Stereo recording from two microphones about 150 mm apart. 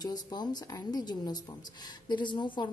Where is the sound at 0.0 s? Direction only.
25° left (ahead or behind).